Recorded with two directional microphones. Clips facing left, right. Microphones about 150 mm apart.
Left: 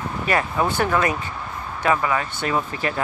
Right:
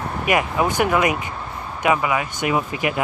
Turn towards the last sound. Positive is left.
turn(degrees=-15)  # may be behind; listen again after turning